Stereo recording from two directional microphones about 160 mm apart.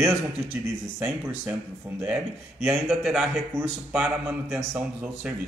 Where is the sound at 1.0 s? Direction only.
15° right (ahead or behind).